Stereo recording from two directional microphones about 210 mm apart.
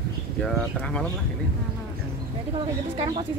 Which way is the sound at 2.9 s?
20° right (ahead or behind).